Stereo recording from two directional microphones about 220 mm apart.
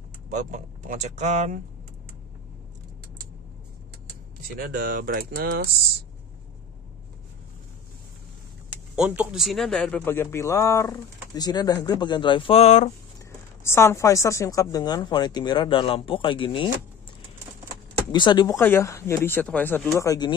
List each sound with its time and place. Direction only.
0.3 s speech: 35° right (ahead or behind)
4.6 s speech: 40° right (ahead or behind)
8.9 s speech: 5° right (ahead or behind); by 12.9 s 30° left (ahead or behind)
13.7 s a woman's voice: 10° left (ahead or behind)
18.1 s a woman's voice: 20° left (ahead or behind)